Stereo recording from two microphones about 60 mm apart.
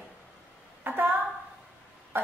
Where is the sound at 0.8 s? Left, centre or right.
Right.